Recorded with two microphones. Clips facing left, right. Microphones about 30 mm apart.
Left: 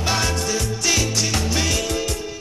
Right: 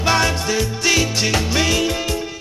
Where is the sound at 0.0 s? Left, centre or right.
Right.